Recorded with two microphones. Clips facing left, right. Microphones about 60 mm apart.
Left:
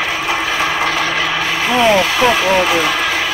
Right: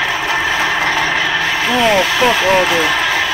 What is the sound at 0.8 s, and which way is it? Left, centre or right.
Vehicle, right.